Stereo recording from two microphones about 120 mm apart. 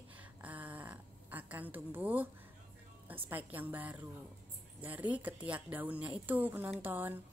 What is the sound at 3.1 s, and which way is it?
A woman's voice, 15° right (ahead or behind).